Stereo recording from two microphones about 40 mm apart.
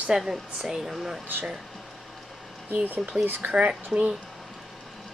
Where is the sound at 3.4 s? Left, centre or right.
Right.